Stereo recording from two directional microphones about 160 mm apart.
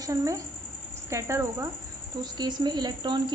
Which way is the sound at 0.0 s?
20° right (ahead or behind).